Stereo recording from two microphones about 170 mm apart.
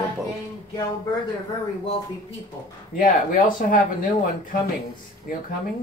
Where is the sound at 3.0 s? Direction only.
50° left (ahead or behind).